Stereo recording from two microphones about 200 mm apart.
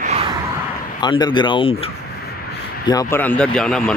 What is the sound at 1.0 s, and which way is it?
Speech, 20° left (ahead or behind).